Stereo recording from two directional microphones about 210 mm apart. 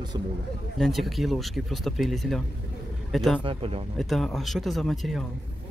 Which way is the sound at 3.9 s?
Centre (ahead or behind).